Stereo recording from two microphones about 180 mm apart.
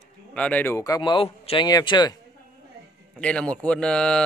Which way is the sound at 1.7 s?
20° left (ahead or behind).